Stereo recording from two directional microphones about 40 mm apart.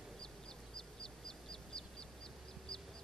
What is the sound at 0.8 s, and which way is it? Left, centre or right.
Bird, centre.